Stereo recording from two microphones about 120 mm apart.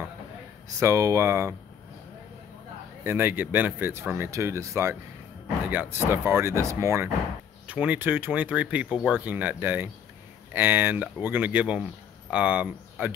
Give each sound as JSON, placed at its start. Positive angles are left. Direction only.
{"t": 0.7, "sound": "speech", "side_deg": -25}
{"t": 3.0, "sound": "speech", "side_deg": -15}
{"t": 7.6, "sound": "speech", "side_deg": -10}